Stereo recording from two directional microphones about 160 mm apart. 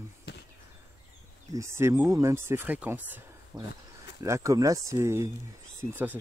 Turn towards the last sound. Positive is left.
turn(degrees=-10)  # may be behind; listen again after turning